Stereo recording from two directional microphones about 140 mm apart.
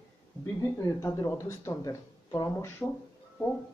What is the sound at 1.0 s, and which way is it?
Speech, 20° left (ahead or behind).